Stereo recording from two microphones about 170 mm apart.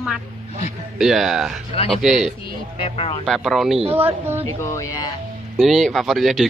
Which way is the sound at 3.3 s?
Centre (ahead or behind).